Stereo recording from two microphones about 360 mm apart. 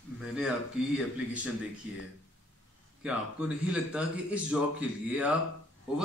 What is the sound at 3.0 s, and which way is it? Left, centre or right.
Speech, centre.